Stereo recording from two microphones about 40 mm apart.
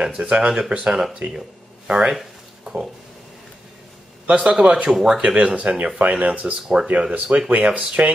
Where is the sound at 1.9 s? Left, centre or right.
Centre.